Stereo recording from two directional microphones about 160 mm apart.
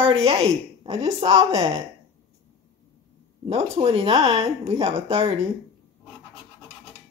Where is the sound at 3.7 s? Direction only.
35° right (ahead or behind).